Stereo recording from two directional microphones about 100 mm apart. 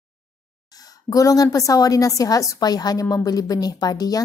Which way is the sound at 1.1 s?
35° left (ahead or behind).